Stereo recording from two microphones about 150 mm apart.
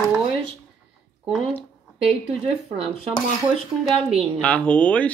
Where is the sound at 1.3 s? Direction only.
Centre (ahead or behind).